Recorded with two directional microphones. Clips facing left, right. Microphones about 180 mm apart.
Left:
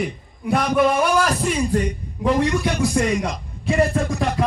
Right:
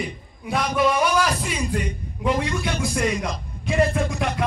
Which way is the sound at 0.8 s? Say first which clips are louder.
Left 1 dB; 50° left (ahead or behind).